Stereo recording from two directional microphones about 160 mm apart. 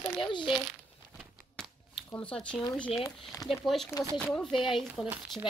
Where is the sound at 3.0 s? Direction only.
20° left (ahead or behind).